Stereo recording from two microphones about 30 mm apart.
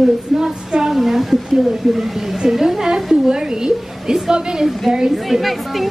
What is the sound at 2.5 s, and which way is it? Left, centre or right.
Speech, centre.